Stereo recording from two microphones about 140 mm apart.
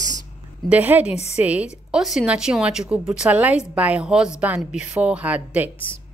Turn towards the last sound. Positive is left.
turn(degrees=-10)  # may be behind; listen again after turning